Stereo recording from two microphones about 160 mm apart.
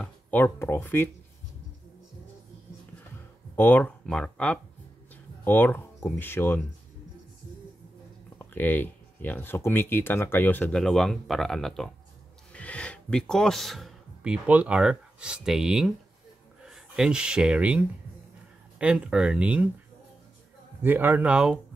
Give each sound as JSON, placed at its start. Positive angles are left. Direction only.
{"t": 0.0, "sound": "speech", "side_deg": 10}
{"t": 3.5, "sound": "speech", "side_deg": 10}
{"t": 8.4, "sound": "speech", "side_deg": 10}
{"t": 20.8, "sound": "speech", "side_deg": -10}